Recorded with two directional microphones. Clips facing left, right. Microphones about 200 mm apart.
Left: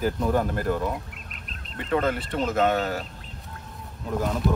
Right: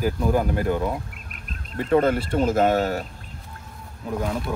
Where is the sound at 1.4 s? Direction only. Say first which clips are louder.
Right 8 dB; 45° right (ahead or behind).